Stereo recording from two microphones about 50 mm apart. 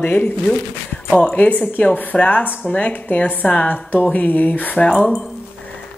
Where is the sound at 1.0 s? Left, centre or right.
Centre.